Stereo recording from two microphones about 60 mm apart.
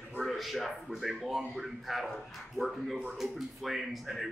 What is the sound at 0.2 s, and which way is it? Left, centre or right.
Speech, centre.